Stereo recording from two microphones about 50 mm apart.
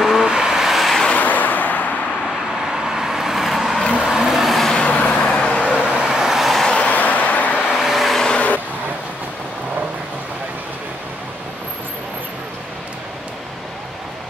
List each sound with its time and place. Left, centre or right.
0.0 s vehicle: centre
1.1 s vehicle: left
2.7 s vehicle: centre
4.7 s vehicle: left
5.1 s vehicle: centre
5.7 s vehicle: centre
6.7 s a sound: left
7.6 s vehicle: centre